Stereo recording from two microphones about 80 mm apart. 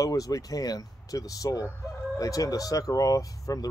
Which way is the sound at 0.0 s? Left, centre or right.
Left.